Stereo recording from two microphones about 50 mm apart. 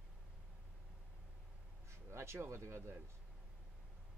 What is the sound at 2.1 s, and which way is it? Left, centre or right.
Speech, right.